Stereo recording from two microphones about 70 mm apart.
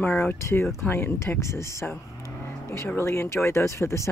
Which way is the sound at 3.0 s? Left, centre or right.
Left.